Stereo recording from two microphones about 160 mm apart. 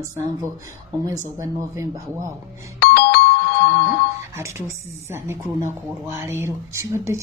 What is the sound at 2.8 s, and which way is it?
Doorbell, 75° left (ahead or behind).